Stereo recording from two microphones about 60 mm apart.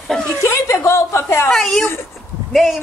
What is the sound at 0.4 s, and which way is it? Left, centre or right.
Chuckle, left.